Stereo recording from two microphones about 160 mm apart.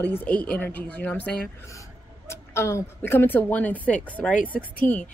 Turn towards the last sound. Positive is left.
turn(degrees=10)  # may be behind; listen again after turning